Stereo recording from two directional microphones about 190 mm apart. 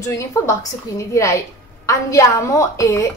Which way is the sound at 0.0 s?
15° left (ahead or behind).